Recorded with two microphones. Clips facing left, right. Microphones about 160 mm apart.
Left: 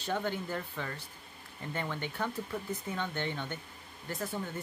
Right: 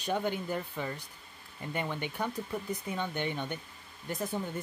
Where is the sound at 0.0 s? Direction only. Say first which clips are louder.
Right 2 dB; 15° right (ahead or behind).